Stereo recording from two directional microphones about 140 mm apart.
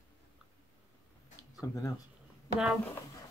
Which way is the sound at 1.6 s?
25° left (ahead or behind).